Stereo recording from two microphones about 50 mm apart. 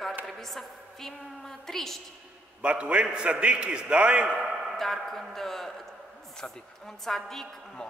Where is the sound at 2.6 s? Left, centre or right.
Right.